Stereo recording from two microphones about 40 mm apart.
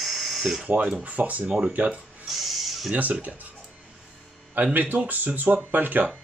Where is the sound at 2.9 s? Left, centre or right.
Right.